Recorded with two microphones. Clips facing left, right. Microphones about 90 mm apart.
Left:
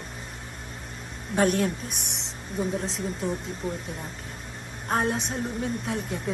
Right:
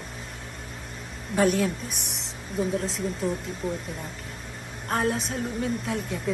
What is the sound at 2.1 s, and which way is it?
A woman's voice, centre (ahead or behind).